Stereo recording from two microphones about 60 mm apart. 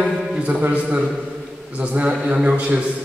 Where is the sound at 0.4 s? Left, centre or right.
Right.